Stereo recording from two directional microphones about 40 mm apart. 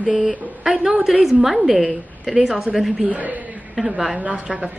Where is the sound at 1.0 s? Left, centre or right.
Centre.